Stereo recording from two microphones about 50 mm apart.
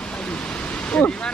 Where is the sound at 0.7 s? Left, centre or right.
Left.